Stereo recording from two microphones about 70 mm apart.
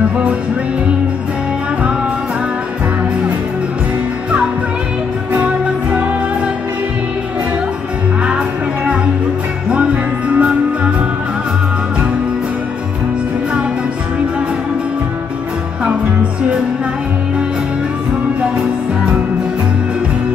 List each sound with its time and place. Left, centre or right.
5.3 s music: centre
9.7 s music: centre